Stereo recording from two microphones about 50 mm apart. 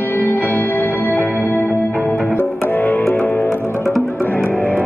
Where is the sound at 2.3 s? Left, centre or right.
Left.